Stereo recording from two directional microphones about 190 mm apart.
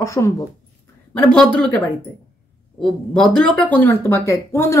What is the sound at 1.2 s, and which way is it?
A woman's voice, 5° left (ahead or behind).